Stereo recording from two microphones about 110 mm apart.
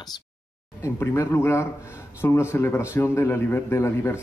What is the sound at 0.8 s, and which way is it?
A man's voice, 20° left (ahead or behind).